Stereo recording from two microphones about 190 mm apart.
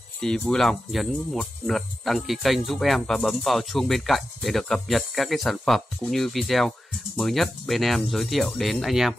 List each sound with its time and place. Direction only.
0.2 s speech: 5° left (ahead or behind)